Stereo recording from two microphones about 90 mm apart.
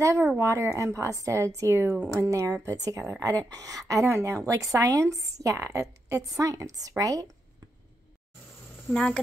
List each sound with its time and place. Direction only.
0.0 s a woman's voice: 35° right (ahead or behind)
8.9 s speech: 10° left (ahead or behind)